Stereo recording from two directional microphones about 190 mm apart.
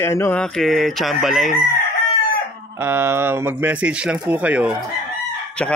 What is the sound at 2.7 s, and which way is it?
Speech, 15° right (ahead or behind).